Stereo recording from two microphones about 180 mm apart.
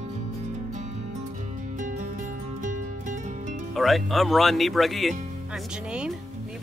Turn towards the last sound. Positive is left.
turn(degrees=0)  # may be behind; listen again after turning